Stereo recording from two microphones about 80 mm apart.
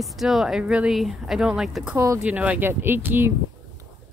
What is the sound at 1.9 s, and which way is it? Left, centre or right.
Speech, right.